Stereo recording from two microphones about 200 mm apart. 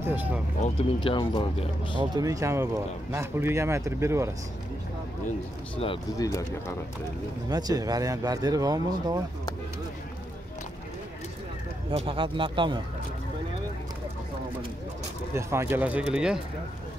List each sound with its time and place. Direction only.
0.0 s speech: 10° right (ahead or behind)
0.6 s speech: 25° left (ahead or behind)
2.1 s speech: 15° right (ahead or behind)
6.1 s speech: 15° left (ahead or behind)
7.4 s speech: 20° right (ahead or behind)
11.9 s a man's voice: 30° right (ahead or behind)
15.3 s speech: 10° right (ahead or behind)